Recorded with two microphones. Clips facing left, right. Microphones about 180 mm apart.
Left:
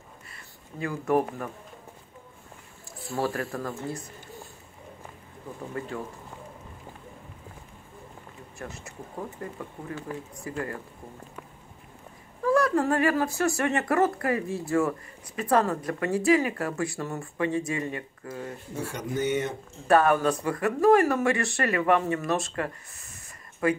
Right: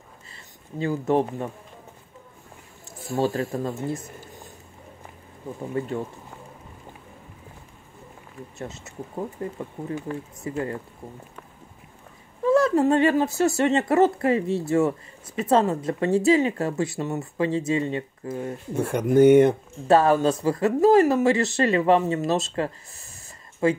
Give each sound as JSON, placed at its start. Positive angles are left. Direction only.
{"t": 0.3, "sound": "speech", "side_deg": -25}
{"t": 3.2, "sound": "speech", "side_deg": -20}
{"t": 5.8, "sound": "speech", "side_deg": -25}
{"t": 8.5, "sound": "speech", "side_deg": -20}
{"t": 12.4, "sound": "speech", "side_deg": -25}
{"t": 18.8, "sound": "speech", "side_deg": -55}
{"t": 19.9, "sound": "speech", "side_deg": -25}